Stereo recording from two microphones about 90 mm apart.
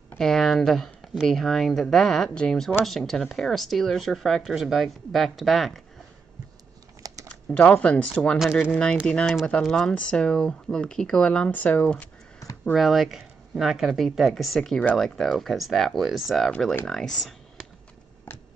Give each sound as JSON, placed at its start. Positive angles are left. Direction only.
{"t": 0.2, "sound": "speech", "side_deg": 5}
{"t": 7.0, "sound": "typing", "side_deg": -40}
{"t": 7.5, "sound": "speech", "side_deg": 15}
{"t": 12.4, "sound": "a sound", "side_deg": 35}
{"t": 12.7, "sound": "speech", "side_deg": 0}